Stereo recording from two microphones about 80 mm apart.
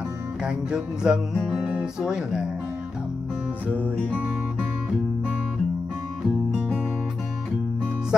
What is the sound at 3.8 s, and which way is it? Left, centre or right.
Music, right.